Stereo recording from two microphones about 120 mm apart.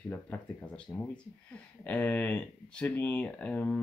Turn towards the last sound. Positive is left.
turn(degrees=15)  # may be behind; listen again after turning